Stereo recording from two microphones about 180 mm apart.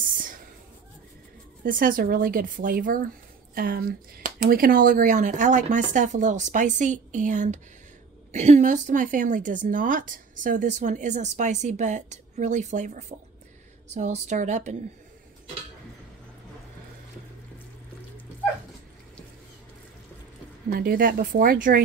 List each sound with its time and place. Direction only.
1.6 s a woman's voice: 50° right (ahead or behind)
20.7 s a woman's voice: 55° right (ahead or behind)